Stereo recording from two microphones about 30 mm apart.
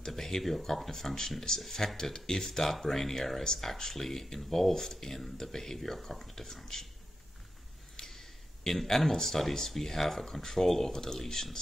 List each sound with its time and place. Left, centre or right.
0.0 s speech: centre
2.4 s speech: centre
7.9 s a sound: centre
9.4 s speech: centre